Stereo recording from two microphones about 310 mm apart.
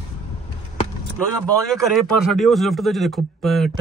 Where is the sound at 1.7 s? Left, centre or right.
Centre.